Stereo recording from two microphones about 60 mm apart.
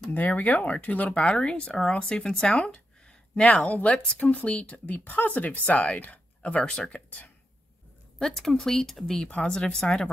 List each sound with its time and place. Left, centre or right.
0.1 s speech: left
1.3 s speech: centre
8.2 s speech: centre
9.1 s speech: centre